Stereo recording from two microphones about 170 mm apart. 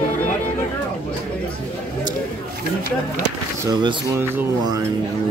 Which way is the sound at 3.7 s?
25° right (ahead or behind).